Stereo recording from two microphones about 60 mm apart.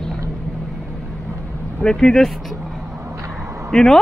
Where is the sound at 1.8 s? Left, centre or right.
Centre.